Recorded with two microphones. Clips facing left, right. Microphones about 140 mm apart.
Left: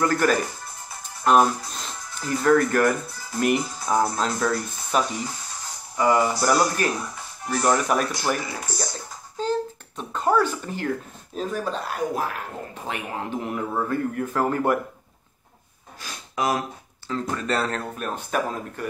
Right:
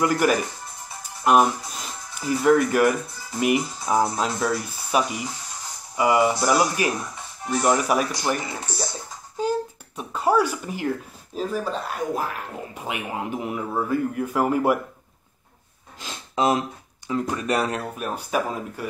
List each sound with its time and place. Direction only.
0.0 s speech: 10° right (ahead or behind)
8.4 s speech: 25° right (ahead or behind)
9.4 s a sound: 10° right (ahead or behind)
11.3 s speech: centre (ahead or behind)
16.0 s sniff: 25° right (ahead or behind)
17.1 s speech: 15° right (ahead or behind)